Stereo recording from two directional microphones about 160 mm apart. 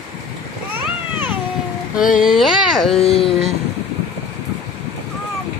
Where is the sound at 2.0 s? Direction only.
55° left (ahead or behind).